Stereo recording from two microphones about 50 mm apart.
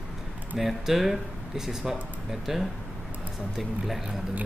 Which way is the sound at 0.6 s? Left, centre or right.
Centre.